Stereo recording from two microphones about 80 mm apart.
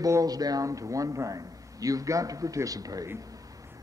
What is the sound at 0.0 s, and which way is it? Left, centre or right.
A man's voice, right.